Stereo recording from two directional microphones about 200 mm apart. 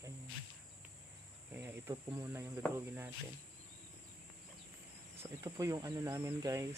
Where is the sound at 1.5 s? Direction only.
10° right (ahead or behind).